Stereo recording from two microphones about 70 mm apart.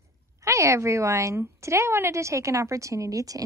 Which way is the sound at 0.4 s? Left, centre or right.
Right.